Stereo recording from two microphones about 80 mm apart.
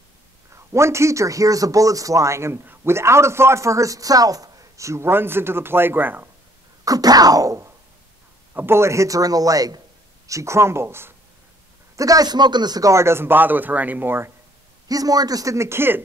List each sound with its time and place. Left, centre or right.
0.5 s a man's voice: right
6.8 s speech: right
8.5 s a man's voice: right
10.2 s a man's voice: right
12.0 s speech: right
12.9 s speech: right
14.9 s a man's voice: right